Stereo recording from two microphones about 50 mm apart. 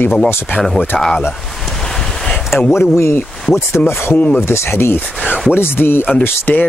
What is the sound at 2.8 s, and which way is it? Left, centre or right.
Speech, left.